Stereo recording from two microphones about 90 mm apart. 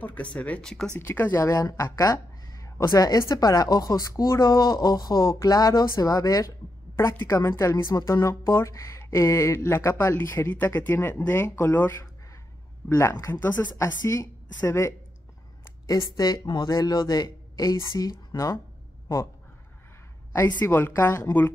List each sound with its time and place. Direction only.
0.0 s speech: 15° left (ahead or behind)
0.9 s speech: 20° left (ahead or behind)
1.4 s speech: 40° left (ahead or behind); by 12.0 s 20° left (ahead or behind)
13.3 s speech: 20° left (ahead or behind)
13.7 s speech: 35° left (ahead or behind)
15.9 s speech: 40° left (ahead or behind)
20.3 s speech: 25° left (ahead or behind)